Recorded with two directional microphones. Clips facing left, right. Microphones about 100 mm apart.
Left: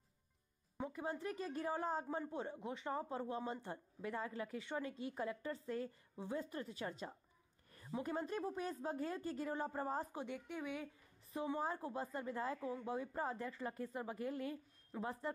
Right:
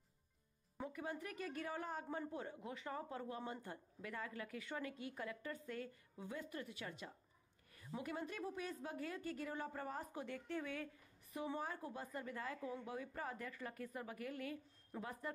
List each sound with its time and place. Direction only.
0.8 s a woman's voice: 25° left (ahead or behind)
10.2 s a woman's voice: 15° left (ahead or behind)
11.6 s a woman's voice: 30° left (ahead or behind)